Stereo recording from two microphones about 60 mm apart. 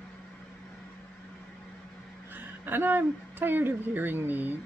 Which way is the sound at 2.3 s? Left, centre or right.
Right.